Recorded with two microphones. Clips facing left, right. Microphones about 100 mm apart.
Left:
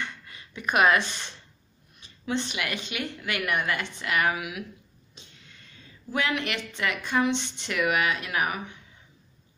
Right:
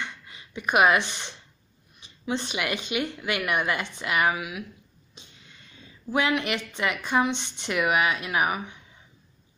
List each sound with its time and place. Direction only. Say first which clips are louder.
0.0 s a sound: even; 20° right (ahead or behind)
2.4 s speech: right 3 dB; 20° right (ahead or behind)
4.4 s speech: even; centre (ahead or behind)
6.1 s speech: right 3 dB; 15° right (ahead or behind)